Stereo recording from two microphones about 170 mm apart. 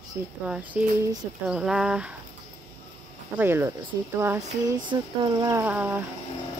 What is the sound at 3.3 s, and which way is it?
Speech, 15° right (ahead or behind).